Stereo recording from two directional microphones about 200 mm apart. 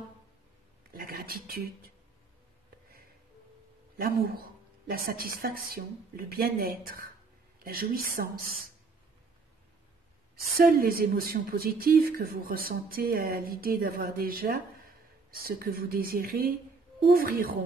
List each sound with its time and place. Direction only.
0.9 s a sound: 50° right (ahead or behind)
3.9 s a woman's voice: 50° right (ahead or behind)
10.6 s a woman's voice: 45° right (ahead or behind)